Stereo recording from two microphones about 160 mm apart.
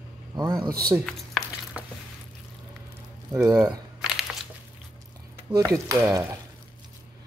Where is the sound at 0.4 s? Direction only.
25° right (ahead or behind).